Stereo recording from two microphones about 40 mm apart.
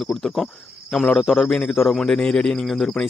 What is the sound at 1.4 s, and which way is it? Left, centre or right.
A man's voice, left.